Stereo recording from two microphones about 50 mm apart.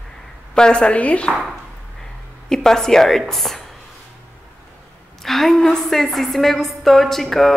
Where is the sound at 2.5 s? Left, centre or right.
Centre.